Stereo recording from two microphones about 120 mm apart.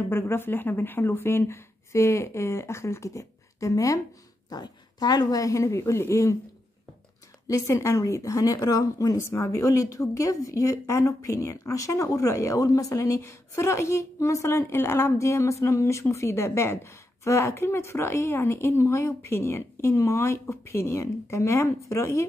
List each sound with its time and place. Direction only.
0.1 s speech: 20° left (ahead or behind)
7.4 s speech: 25° left (ahead or behind)